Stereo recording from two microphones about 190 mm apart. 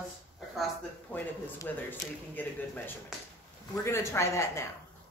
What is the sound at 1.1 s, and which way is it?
Speech, 10° left (ahead or behind).